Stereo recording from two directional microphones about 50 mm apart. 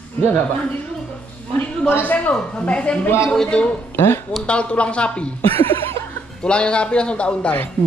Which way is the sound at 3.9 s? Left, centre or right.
Left.